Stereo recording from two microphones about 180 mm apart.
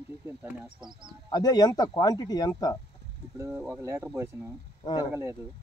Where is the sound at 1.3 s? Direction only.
20° left (ahead or behind).